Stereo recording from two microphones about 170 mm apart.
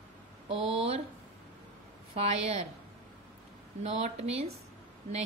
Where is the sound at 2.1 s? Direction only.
40° right (ahead or behind).